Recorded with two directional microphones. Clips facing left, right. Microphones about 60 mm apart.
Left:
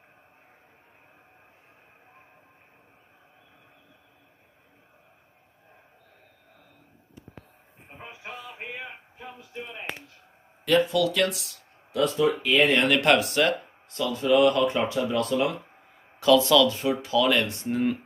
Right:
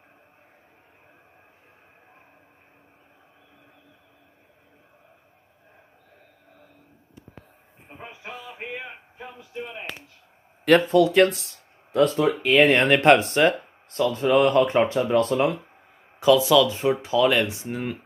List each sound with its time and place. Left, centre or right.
8.2 s music: centre
10.9 s speech: right
16.2 s speech: centre
16.6 s speech: right
17.6 s speech: centre